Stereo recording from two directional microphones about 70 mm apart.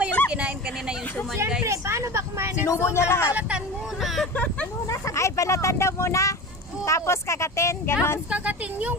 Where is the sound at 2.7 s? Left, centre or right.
Left.